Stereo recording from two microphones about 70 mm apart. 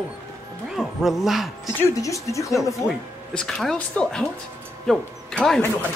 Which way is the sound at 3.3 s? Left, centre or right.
Centre.